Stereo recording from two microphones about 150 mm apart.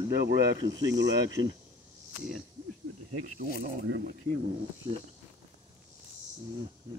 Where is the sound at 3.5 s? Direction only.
85° right.